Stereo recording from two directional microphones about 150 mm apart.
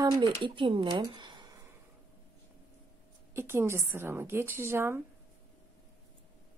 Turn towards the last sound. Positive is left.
turn(degrees=-15)  # may be behind; listen again after turning